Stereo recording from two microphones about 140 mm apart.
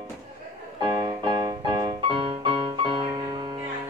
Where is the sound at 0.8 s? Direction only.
35° right (ahead or behind).